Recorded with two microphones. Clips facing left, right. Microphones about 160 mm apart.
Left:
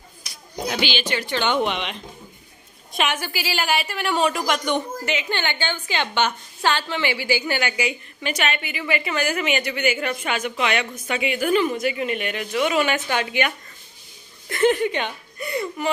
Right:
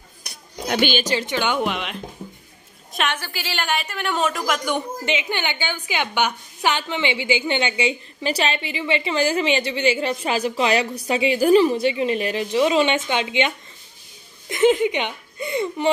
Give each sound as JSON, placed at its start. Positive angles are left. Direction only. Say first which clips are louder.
{"t": 0.7, "sound": "a woman's voice", "louder": "right 4 dB", "side_deg": -50}
{"t": 1.3, "sound": "speech", "louder": "left 3 dB", "side_deg": -10}
{"t": 2.9, "sound": "a sound", "louder": "left 1 dB", "side_deg": 0}
{"t": 3.2, "sound": "speech", "louder": "left 2 dB", "side_deg": 10}
{"t": 5.0, "sound": "a woman's voice", "louder": "right 1 dB", "side_deg": -20}
{"t": 14.5, "sound": "speech", "louder": "right 2 dB", "side_deg": -15}